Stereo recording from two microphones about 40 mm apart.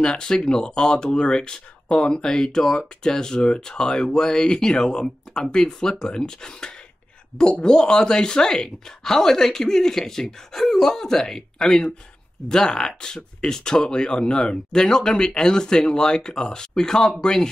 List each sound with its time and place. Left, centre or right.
0.0 s speech: centre